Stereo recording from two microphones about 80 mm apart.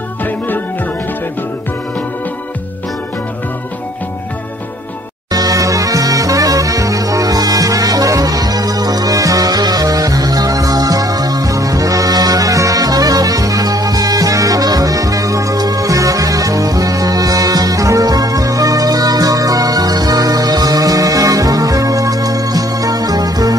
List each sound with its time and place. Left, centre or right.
5.3 s music: right